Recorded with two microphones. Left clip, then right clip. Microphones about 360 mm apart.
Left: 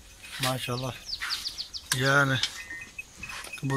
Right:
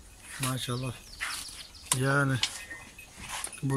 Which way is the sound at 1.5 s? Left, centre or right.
Right.